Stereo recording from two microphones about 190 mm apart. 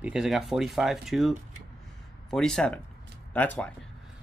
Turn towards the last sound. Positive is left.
turn(degrees=10)  # may be behind; listen again after turning